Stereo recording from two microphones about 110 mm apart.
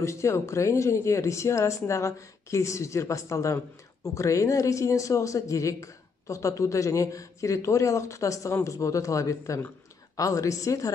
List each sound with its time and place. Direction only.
0.0 s speech: 25° left (ahead or behind)